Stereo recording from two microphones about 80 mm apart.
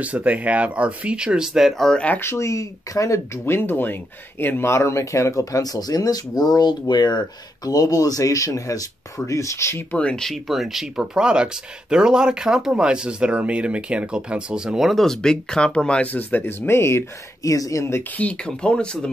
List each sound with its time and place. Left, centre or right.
0.0 s speech: centre
1.8 s speech: centre
2.0 s speech: left
3.4 s speech: left
9.9 s speech: centre; by 17.0 s left
17.4 s speech: left
18.1 s speech: centre